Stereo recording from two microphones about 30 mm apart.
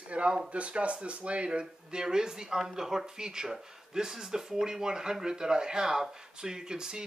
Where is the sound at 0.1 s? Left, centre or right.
Right.